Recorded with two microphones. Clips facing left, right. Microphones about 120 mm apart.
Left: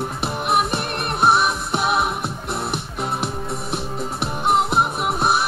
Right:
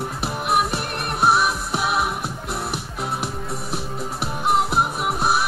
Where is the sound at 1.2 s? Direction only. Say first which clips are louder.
Left 1 dB; 5° right (ahead or behind).